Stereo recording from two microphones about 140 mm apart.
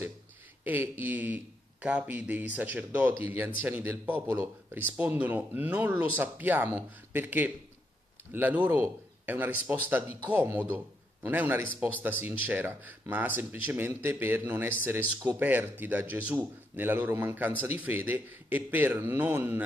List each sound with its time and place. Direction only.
0.7 s a man's voice: 15° right (ahead or behind)